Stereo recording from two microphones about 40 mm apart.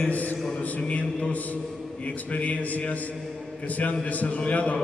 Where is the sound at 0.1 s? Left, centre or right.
Left.